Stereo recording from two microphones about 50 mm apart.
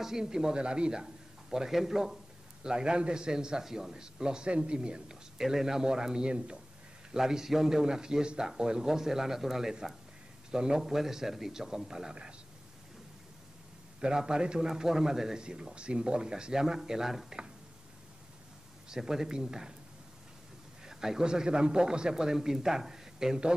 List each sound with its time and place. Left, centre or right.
0.0 s a man's voice: centre
14.0 s a man's voice: centre
18.9 s a man's voice: centre
20.8 s a man's voice: centre